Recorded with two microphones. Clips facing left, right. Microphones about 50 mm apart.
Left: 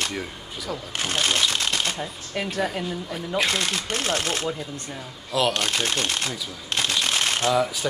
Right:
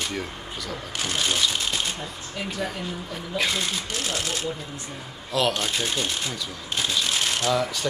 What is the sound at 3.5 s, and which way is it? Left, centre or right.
Speech, left.